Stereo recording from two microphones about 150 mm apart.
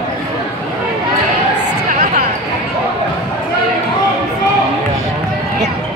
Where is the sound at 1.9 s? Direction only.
55° right (ahead or behind).